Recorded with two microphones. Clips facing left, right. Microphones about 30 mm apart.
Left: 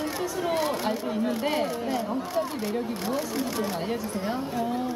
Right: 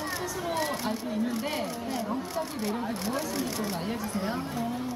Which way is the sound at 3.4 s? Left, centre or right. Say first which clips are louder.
Left 3 dB; centre.